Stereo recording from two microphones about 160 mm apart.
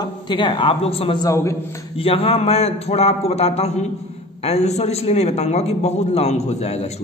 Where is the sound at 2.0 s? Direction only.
35° left (ahead or behind).